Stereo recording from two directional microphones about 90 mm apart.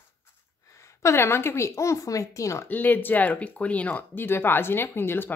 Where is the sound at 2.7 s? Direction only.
20° left (ahead or behind).